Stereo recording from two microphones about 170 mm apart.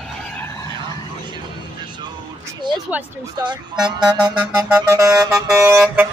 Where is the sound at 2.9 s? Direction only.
10° right (ahead or behind).